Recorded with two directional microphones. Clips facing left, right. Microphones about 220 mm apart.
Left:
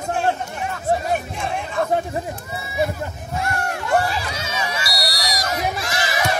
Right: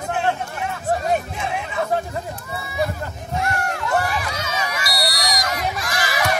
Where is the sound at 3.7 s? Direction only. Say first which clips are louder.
Left 5 dB; 25° left (ahead or behind).